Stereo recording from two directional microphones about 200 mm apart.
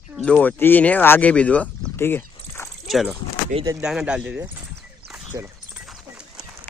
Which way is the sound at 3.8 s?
5° right (ahead or behind).